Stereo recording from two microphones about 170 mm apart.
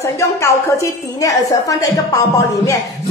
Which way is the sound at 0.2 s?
20° left (ahead or behind).